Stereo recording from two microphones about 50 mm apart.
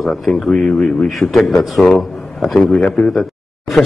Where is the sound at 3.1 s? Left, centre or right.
Centre.